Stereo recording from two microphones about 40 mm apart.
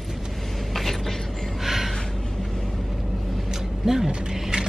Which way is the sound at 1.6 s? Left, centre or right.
Centre.